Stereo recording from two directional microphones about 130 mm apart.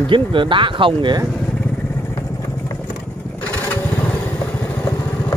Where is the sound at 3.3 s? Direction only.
10° left (ahead or behind).